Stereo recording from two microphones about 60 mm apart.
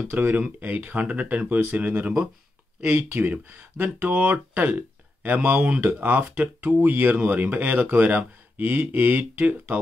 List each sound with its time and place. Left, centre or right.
0.1 s speech: right